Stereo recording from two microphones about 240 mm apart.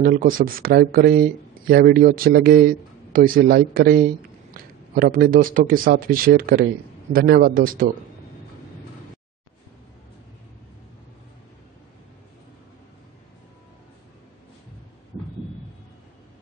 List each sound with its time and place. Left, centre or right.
0.0 s a man's voice: right